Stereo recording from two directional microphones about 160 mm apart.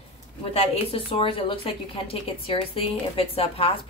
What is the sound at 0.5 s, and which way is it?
A woman's voice, 35° left (ahead or behind).